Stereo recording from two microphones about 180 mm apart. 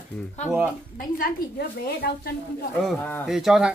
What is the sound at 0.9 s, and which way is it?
A woman's voice, 50° left (ahead or behind).